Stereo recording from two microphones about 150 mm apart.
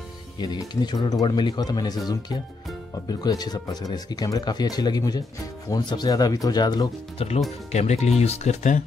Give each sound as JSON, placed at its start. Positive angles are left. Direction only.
{"t": 0.4, "sound": "speech", "side_deg": 30}
{"t": 3.1, "sound": "speech", "side_deg": 25}
{"t": 7.2, "sound": "speech", "side_deg": 45}